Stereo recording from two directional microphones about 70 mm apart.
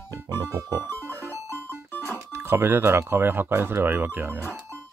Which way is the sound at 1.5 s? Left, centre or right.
Left.